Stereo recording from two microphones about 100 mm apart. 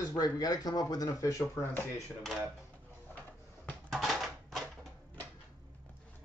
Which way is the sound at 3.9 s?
Centre (ahead or behind).